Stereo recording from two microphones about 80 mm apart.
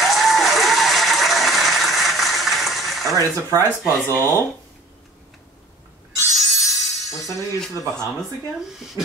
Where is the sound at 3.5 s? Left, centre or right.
Left.